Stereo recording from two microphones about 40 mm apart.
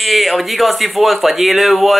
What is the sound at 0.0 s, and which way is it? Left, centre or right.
Speech, centre.